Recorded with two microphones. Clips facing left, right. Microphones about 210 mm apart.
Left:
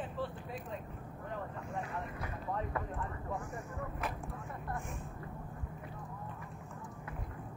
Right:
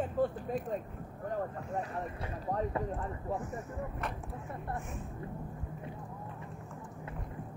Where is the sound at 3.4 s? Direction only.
5° right (ahead or behind).